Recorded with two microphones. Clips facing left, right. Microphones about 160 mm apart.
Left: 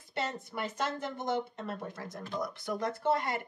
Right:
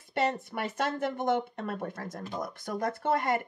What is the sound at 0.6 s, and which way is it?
Speech, 60° right (ahead or behind).